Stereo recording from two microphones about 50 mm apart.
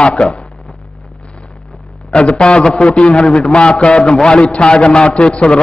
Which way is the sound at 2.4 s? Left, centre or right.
Centre.